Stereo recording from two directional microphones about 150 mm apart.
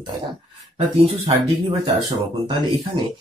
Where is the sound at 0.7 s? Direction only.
45° right (ahead or behind).